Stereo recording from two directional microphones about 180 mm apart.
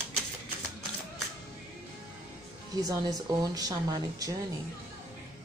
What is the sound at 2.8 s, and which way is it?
Speech, 20° right (ahead or behind).